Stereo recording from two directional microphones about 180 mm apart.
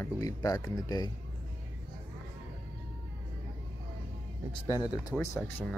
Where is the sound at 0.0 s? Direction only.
20° left (ahead or behind).